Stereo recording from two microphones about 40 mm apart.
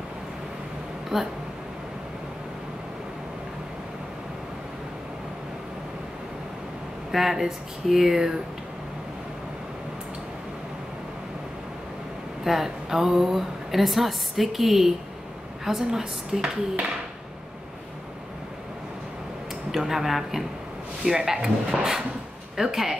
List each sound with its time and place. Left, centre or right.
1.1 s speech: centre
7.1 s speech: centre
12.4 s a woman's voice: centre
19.7 s a woman's voice: centre